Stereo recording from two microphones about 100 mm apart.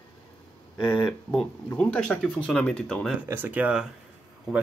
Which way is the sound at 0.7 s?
50° left (ahead or behind).